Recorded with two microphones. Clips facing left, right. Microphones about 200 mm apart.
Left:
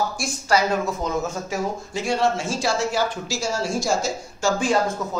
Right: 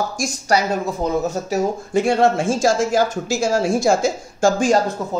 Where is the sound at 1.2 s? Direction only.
40° right (ahead or behind).